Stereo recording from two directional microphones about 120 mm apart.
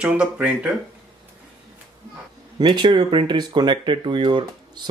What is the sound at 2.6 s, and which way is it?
Speech, 40° right (ahead or behind).